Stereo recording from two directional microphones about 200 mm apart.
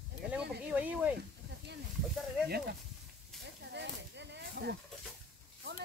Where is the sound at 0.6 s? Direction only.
5° right (ahead or behind).